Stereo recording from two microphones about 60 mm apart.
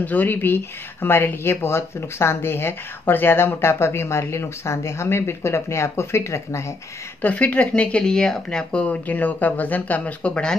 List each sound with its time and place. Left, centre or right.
0.0 s speech: left
7.2 s speech: left
9.0 s speech: left